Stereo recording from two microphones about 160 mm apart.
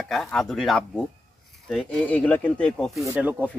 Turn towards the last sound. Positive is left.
turn(degrees=-20)  # may be behind; listen again after turning